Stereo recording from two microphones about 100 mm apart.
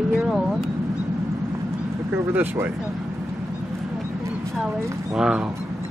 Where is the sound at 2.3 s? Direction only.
20° right (ahead or behind).